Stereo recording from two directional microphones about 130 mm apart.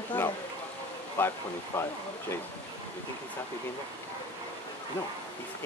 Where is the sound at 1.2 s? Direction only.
20° left (ahead or behind).